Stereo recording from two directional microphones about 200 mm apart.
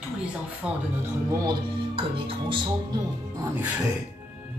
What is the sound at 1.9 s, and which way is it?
Speech, 25° right (ahead or behind).